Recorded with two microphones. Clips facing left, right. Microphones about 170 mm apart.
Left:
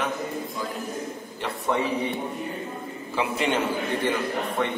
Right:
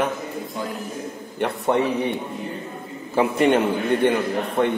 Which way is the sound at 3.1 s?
50° right (ahead or behind).